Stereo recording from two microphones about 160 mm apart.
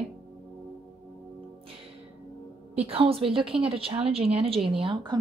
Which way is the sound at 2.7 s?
40° right (ahead or behind).